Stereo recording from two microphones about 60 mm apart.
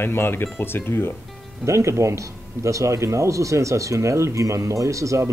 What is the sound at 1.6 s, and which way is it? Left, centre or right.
Speech, right.